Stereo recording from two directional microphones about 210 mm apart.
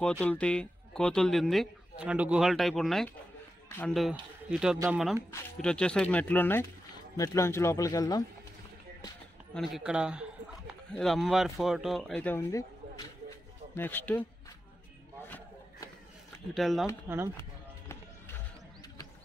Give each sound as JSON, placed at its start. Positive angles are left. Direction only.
{"t": 0.0, "sound": "speech", "side_deg": 5}
{"t": 9.5, "sound": "speech", "side_deg": 0}
{"t": 15.2, "sound": "a sound", "side_deg": 10}
{"t": 16.5, "sound": "speech", "side_deg": 0}
{"t": 17.1, "sound": "speech", "side_deg": -10}